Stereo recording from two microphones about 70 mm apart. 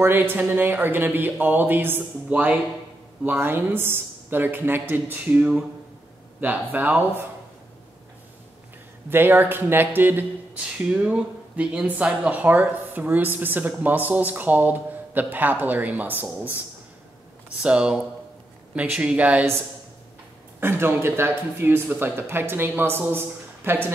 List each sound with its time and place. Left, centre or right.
0.0 s speech: right
9.1 s a man's voice: right
10.6 s speech: centre
17.6 s speech: centre
20.6 s a man's voice: right